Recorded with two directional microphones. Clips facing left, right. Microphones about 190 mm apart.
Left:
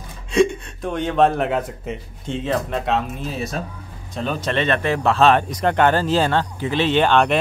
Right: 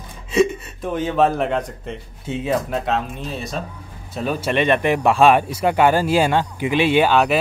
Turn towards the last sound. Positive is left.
turn(degrees=-5)  # may be behind; listen again after turning